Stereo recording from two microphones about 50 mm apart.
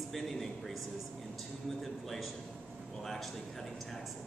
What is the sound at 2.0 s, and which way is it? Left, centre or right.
Speech, centre.